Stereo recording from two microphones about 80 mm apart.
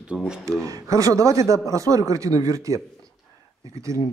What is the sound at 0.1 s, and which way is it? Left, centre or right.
Speech, centre.